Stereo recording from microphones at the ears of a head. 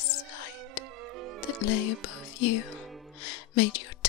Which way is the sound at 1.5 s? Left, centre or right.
Left.